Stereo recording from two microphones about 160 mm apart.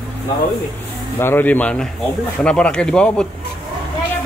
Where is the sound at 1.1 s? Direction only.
15° left (ahead or behind).